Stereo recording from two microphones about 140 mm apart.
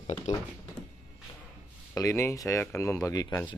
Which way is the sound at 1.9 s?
20° left (ahead or behind).